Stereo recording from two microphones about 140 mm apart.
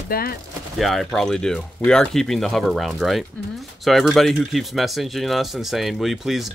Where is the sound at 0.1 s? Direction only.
90° left.